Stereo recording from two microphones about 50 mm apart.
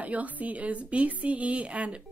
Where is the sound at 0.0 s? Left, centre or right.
Right.